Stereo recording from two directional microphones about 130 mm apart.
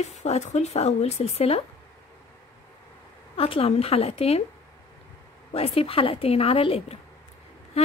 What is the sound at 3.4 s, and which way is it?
A woman's voice, 50° left (ahead or behind).